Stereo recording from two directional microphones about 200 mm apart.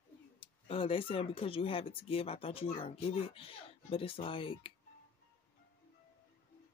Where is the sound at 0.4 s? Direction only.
25° left (ahead or behind).